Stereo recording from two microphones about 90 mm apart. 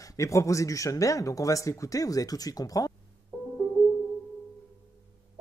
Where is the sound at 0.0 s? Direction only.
40° left (ahead or behind).